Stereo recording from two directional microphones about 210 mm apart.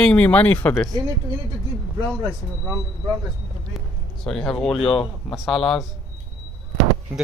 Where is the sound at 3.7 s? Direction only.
Centre (ahead or behind).